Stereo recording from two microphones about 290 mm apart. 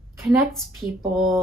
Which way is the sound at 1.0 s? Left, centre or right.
Centre.